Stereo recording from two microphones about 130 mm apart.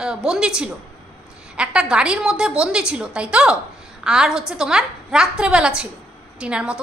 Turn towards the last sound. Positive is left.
turn(degrees=-5)  # may be behind; listen again after turning